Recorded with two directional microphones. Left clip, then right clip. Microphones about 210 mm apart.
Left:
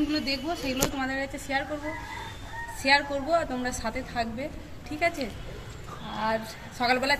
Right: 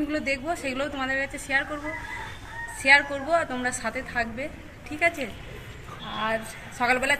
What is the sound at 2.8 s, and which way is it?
A woman's voice, centre (ahead or behind).